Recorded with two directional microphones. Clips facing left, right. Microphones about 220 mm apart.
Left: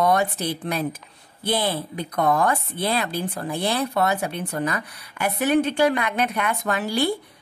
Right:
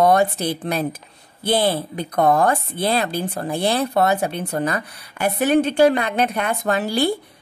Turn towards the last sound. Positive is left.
turn(degrees=-30)  # may be behind; listen again after turning